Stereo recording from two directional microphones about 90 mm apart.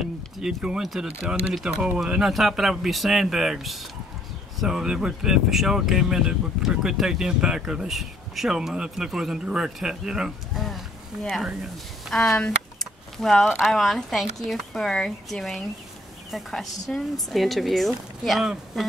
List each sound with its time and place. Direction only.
0.4 s speech: 10° right (ahead or behind)
1.0 s speech: 15° right (ahead or behind)
12.1 s a woman's voice: 5° left (ahead or behind)